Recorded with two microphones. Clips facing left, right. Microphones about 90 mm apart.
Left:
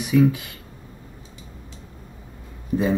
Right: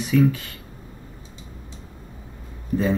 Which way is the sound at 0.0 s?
15° left (ahead or behind).